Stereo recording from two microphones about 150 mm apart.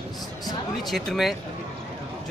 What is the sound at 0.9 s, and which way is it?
Speech, centre (ahead or behind).